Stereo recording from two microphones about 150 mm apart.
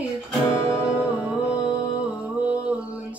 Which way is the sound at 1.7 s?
10° right (ahead or behind).